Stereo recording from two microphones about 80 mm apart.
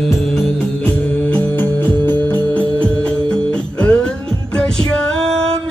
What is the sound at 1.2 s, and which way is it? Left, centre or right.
Music, left.